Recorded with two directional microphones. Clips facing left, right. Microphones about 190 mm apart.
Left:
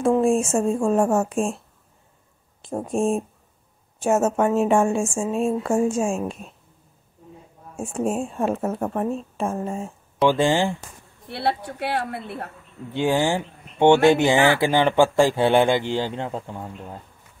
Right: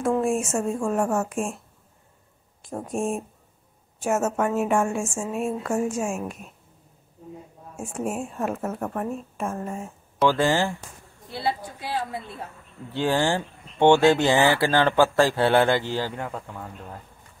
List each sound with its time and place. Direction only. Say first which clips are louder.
0.0 s a woman's voice: left 4 dB; 25° left (ahead or behind)
2.6 s a woman's voice: left 5 dB; 30° left (ahead or behind)
7.7 s a woman's voice: left 5 dB; 25° left (ahead or behind)
11.2 s a woman's voice: left 3 dB; 65° left (ahead or behind)
12.9 s speech: left 2 dB; 15° left (ahead or behind)